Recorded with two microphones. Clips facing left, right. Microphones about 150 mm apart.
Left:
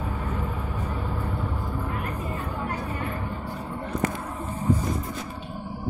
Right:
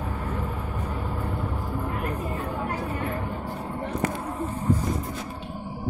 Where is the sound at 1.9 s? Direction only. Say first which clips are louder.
Right 2 dB; 30° right (ahead or behind).